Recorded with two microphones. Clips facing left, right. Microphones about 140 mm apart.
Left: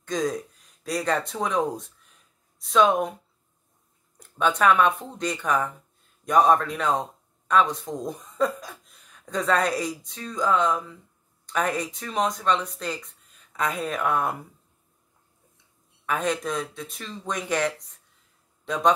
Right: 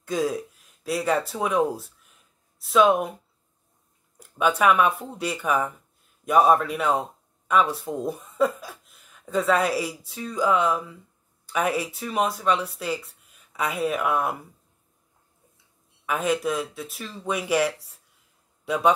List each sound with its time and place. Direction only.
0.0 s speech: 5° right (ahead or behind)
4.2 s a man's voice: 5° right (ahead or behind)
16.1 s speech: 5° right (ahead or behind)